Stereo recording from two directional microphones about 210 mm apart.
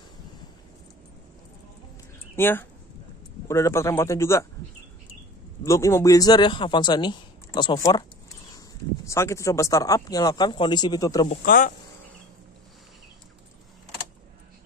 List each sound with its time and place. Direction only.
2.3 s speech: 10° left (ahead or behind)
5.6 s a man's voice: 15° left (ahead or behind)
9.0 s speech: 15° left (ahead or behind)
11.2 s speech: 40° left (ahead or behind)